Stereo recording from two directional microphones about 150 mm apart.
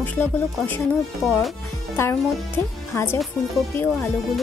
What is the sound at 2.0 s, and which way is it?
Speech, 15° left (ahead or behind).